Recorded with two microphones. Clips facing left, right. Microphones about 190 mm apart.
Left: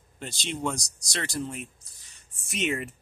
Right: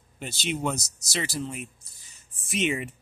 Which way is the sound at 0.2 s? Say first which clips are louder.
Right 2 dB; 5° right (ahead or behind).